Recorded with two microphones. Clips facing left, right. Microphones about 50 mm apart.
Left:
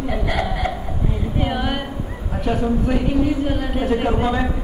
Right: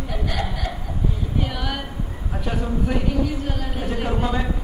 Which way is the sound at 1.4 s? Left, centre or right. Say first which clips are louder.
Left 9 dB; left.